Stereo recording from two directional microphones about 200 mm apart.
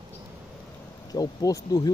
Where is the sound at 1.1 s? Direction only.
20° left (ahead or behind).